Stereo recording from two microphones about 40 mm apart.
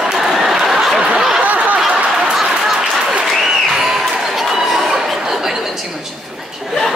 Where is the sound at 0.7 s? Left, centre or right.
Centre.